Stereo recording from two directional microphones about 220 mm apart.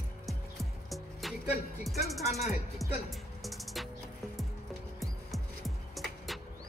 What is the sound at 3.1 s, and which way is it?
Music, centre (ahead or behind).